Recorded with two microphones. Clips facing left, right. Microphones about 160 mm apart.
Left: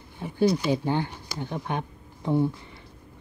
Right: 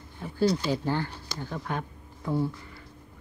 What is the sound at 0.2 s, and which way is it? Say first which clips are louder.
Speech: left 2 dB; 15° left (ahead or behind).